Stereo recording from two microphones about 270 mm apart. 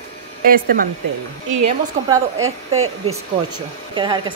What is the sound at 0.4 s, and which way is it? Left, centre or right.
Speech, right.